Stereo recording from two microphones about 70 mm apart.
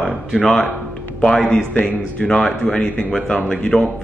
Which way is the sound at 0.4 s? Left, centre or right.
Centre.